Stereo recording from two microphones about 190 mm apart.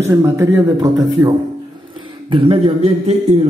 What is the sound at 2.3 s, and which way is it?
Speech, 30° right (ahead or behind).